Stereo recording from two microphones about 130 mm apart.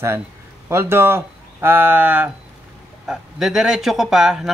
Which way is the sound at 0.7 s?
20° right (ahead or behind).